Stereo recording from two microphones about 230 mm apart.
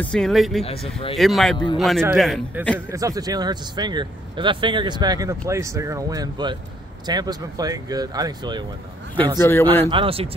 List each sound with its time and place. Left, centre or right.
0.0 s a man's voice: centre
2.9 s speech: centre
9.4 s speech: centre
9.8 s speech: right